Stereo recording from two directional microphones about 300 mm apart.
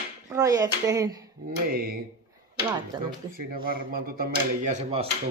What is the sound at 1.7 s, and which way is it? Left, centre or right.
Speech, right.